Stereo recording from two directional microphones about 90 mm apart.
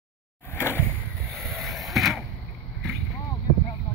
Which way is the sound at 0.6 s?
25° left (ahead or behind).